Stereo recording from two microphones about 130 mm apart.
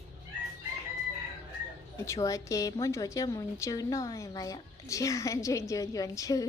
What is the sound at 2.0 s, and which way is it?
A woman's voice, 25° left (ahead or behind).